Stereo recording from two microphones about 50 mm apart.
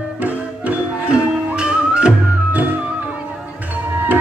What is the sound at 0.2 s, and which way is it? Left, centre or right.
Music, right.